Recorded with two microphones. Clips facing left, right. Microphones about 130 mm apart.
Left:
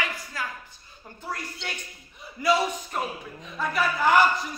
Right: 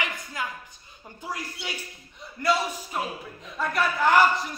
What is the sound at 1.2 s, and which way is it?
A man's voice, 10° right (ahead or behind).